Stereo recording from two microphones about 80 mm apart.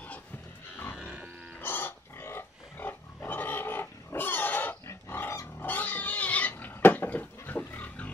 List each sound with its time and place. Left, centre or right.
1.0 s wild animals: centre
1.6 s pig: left